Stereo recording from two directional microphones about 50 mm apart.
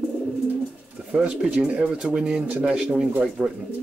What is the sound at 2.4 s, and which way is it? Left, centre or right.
Speech, right.